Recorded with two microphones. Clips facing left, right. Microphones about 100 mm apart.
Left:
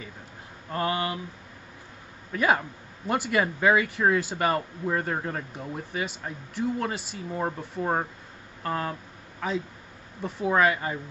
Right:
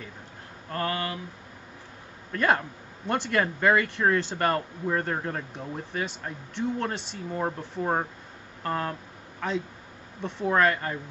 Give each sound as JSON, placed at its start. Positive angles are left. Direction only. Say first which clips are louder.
{"t": 0.7, "sound": "speech", "louder": "left 2 dB", "side_deg": 15}
{"t": 2.3, "sound": "speech", "louder": "even", "side_deg": 5}